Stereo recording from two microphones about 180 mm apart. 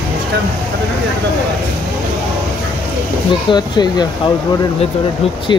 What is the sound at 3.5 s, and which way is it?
Speech, 25° left (ahead or behind).